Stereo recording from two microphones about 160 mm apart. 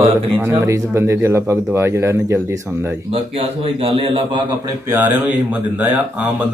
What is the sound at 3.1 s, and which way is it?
A man's voice, 35° right (ahead or behind).